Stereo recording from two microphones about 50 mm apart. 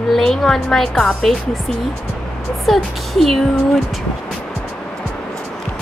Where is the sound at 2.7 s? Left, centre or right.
Centre.